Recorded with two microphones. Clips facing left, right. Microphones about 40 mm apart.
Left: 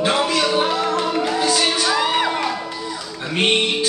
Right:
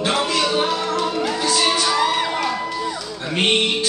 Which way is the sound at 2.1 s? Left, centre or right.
Left.